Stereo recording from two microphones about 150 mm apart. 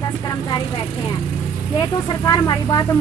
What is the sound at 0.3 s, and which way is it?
A woman's voice, 30° left (ahead or behind).